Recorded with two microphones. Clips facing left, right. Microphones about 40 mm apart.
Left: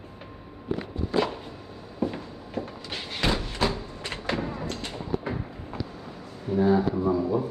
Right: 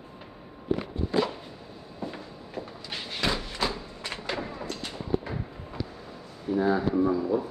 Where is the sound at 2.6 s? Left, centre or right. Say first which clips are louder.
Left 5 dB; left.